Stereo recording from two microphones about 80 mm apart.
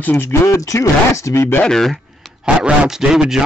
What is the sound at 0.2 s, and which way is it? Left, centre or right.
Speech, left.